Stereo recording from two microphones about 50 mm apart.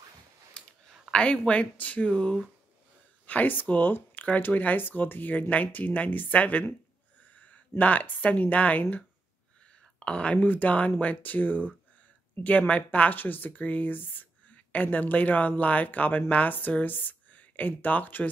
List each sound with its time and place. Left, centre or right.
0.6 s a sound: centre
1.1 s speech: centre
3.3 s a woman's voice: left
9.9 s speech: left
12.4 s speech: left
13.1 s a woman's voice: left